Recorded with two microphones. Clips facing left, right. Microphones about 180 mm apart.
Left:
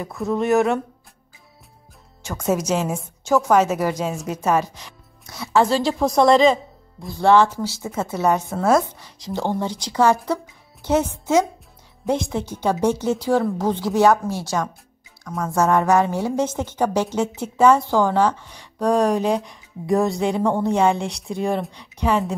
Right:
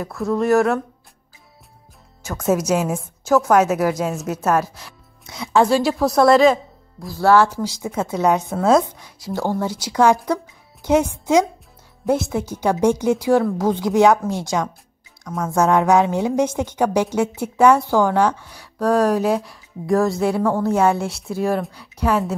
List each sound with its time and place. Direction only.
0.0 s speech: centre (ahead or behind)
2.4 s a woman's voice: 10° right (ahead or behind)
5.3 s a woman's voice: 15° right (ahead or behind)
15.2 s speech: centre (ahead or behind)
15.5 s a woman's voice: 15° right (ahead or behind)